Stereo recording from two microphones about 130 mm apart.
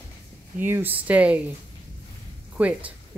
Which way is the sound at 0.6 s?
15° right (ahead or behind).